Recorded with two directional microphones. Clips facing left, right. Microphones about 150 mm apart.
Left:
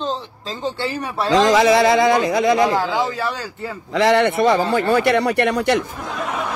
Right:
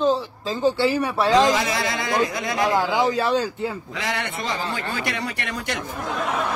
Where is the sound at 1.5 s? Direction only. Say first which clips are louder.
Left 9 dB; 90° left.